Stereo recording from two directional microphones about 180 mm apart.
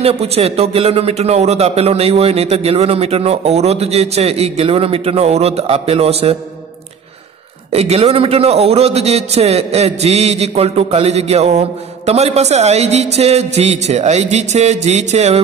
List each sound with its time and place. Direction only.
0.0 s a man's voice: 35° right (ahead or behind)
7.7 s a man's voice: 35° right (ahead or behind)